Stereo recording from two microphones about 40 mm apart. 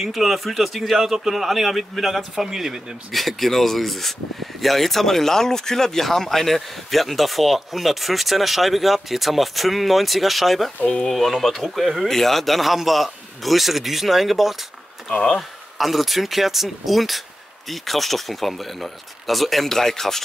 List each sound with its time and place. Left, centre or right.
0.0 s speech: centre
3.1 s speech: centre
10.8 s speech: left
11.1 s speech: centre
15.0 s speech: centre
15.3 s speech: centre